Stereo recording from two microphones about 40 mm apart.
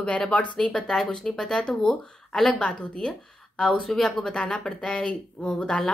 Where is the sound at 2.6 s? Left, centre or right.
Left.